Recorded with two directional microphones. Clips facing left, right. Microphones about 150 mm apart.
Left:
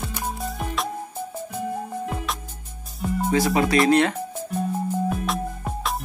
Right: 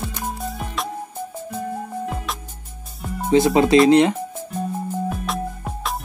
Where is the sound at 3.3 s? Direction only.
25° right (ahead or behind).